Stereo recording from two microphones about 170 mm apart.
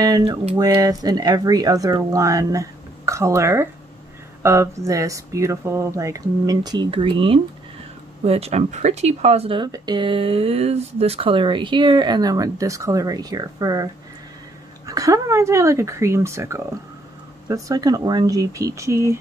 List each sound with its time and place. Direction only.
0.2 s a sound: 35° right (ahead or behind)
0.6 s speech: 25° right (ahead or behind)
14.9 s speech: 20° right (ahead or behind)